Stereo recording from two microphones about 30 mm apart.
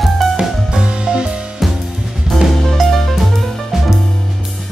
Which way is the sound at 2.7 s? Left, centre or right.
Centre.